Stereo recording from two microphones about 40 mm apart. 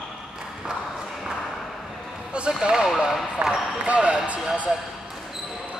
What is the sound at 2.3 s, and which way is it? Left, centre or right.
Basketball bounce, right.